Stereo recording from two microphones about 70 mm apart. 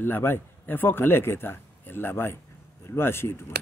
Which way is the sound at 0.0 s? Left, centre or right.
Left.